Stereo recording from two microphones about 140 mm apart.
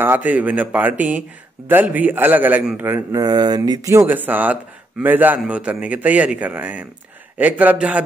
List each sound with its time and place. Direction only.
0.0 s a man's voice: 15° right (ahead or behind)
2.9 s speech: 25° right (ahead or behind)
4.1 s a man's voice: 10° right (ahead or behind)